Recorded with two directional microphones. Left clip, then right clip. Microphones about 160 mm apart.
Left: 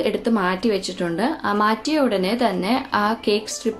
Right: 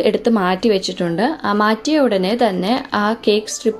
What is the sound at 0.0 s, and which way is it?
A woman's voice, 35° right (ahead or behind).